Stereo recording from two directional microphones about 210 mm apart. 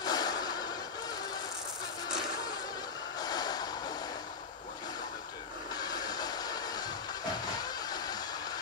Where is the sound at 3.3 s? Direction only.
20° left (ahead or behind).